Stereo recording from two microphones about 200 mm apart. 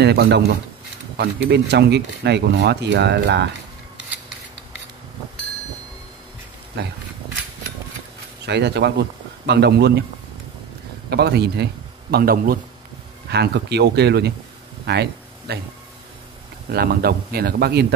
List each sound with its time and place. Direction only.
0.0 s speech: 55° right (ahead or behind)
6.8 s speech: 55° right (ahead or behind)
8.5 s speech: 55° right (ahead or behind)
11.1 s a man's voice: 55° right (ahead or behind)
16.7 s speech: 50° right (ahead or behind)